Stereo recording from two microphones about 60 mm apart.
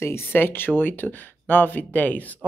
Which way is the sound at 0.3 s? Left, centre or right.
Left.